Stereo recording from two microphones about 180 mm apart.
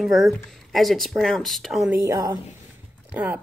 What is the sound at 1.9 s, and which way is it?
Speech, 15° right (ahead or behind).